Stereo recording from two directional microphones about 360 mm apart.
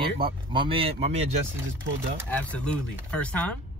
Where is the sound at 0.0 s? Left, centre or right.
Centre.